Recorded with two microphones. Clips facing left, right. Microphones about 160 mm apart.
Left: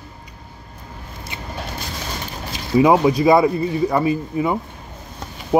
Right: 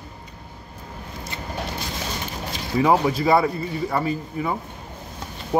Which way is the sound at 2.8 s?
15° left (ahead or behind).